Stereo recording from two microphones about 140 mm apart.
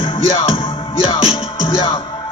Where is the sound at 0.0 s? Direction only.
30° left (ahead or behind).